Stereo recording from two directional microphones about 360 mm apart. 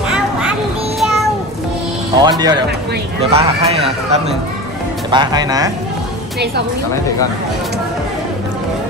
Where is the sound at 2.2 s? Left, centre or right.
Centre.